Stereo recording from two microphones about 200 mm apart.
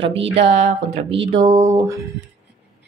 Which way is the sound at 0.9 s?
30° right (ahead or behind).